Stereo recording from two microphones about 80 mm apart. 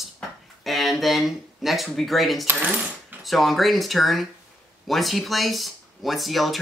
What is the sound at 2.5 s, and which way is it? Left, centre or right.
Coin, right.